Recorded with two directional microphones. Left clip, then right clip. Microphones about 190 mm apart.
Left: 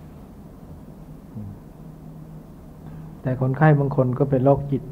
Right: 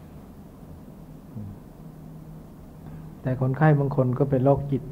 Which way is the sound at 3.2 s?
30° right (ahead or behind).